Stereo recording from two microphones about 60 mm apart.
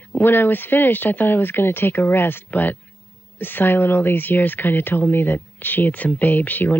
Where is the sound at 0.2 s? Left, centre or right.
Left.